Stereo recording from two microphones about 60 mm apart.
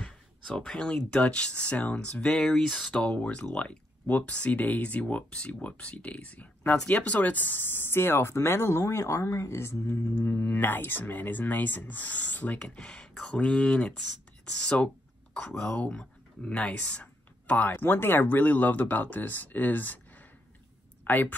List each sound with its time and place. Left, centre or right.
0.0 s speech: centre
2.3 s speech: centre
2.9 s speech: centre; by 8.8 s left
8.8 s speech: left
9.2 s speech: left
10.4 s speech: left